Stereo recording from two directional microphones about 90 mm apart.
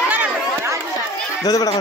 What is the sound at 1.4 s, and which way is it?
Speech, 45° left (ahead or behind).